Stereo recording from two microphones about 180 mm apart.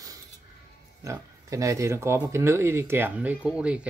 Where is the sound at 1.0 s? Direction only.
15° right (ahead or behind).